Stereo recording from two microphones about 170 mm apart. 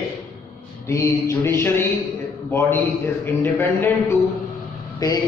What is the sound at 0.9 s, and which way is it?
A man's voice, 15° left (ahead or behind).